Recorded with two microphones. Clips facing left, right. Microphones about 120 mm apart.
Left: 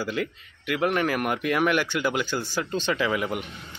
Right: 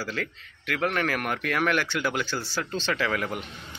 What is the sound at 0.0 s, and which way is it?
Speech, 10° left (ahead or behind).